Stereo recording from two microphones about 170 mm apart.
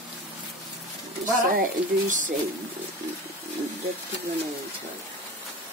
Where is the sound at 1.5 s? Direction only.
50° right (ahead or behind).